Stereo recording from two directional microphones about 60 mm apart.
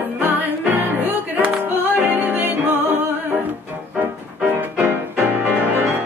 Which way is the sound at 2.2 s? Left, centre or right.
Right.